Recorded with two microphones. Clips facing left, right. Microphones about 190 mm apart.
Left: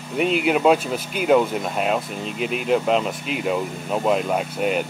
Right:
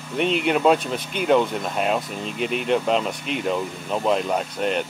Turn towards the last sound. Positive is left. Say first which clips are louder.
# left 1 dB
turn(degrees=5)  # may be behind; listen again after turning